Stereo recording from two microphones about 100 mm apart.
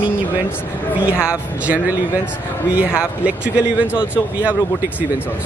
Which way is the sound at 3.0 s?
10° right (ahead or behind).